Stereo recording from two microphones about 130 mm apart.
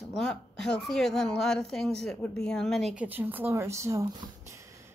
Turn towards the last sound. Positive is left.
turn(degrees=-25)  # may be behind; listen again after turning